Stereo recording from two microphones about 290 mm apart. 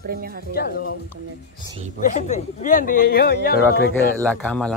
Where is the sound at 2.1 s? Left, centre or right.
Left.